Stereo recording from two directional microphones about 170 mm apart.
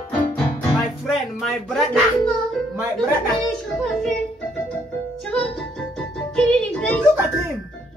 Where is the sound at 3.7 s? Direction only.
5° left (ahead or behind).